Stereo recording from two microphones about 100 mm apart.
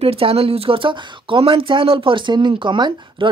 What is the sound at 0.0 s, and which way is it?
Speech, 75° right (ahead or behind).